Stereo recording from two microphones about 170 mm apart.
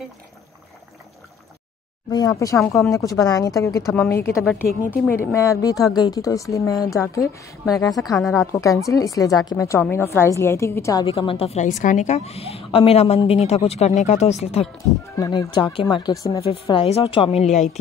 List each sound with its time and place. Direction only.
2.0 s speech: 20° left (ahead or behind)
3.8 s a woman's voice: centre (ahead or behind)
4.1 s speech: 15° left (ahead or behind)
4.5 s a woman's voice: 5° left (ahead or behind)
11.1 s a woman's voice: 30° left (ahead or behind)
15.1 s speech: 25° left (ahead or behind)
16.4 s a woman's voice: 30° left (ahead or behind)